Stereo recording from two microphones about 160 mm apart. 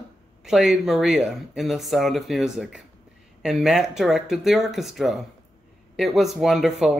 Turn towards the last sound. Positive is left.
turn(degrees=0)  # may be behind; listen again after turning